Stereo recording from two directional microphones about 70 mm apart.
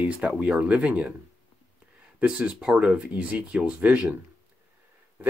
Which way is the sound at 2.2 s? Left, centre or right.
Centre.